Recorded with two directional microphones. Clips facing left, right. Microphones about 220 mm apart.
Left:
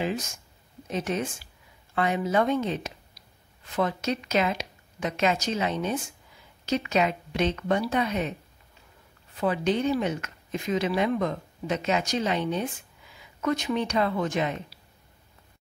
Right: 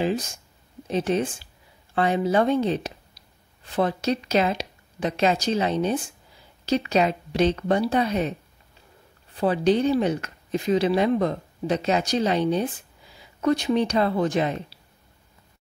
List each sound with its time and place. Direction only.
0.0 s speech: 35° right (ahead or behind)